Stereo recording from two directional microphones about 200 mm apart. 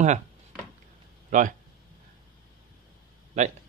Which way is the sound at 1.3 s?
40° right (ahead or behind).